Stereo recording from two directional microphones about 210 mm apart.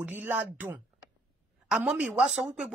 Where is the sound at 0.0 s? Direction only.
5° right (ahead or behind).